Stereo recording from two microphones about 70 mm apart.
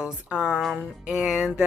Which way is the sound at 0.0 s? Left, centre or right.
Centre.